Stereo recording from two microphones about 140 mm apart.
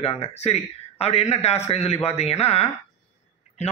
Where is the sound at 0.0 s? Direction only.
50° left (ahead or behind).